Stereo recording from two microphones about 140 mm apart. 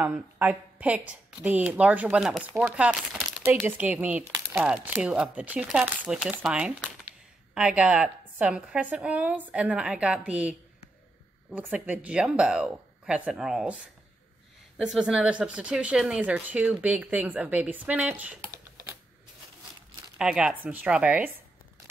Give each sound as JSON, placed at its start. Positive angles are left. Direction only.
{"t": 0.0, "sound": "speech", "side_deg": -15}
{"t": 11.5, "sound": "speech", "side_deg": -10}
{"t": 14.8, "sound": "speech", "side_deg": -5}
{"t": 18.5, "sound": "typing", "side_deg": -20}
{"t": 20.2, "sound": "speech", "side_deg": -5}